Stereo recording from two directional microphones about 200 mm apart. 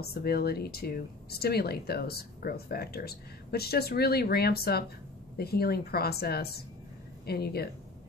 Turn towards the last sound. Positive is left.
turn(degrees=50)  # may be behind; listen again after turning